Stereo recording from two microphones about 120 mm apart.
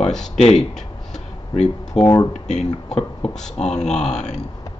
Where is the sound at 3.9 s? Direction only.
70° left (ahead or behind).